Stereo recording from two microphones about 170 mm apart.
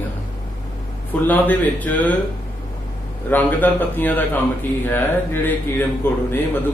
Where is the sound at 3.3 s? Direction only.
10° left (ahead or behind).